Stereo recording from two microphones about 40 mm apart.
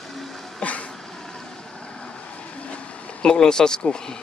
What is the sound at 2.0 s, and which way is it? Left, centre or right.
Vehicle, left.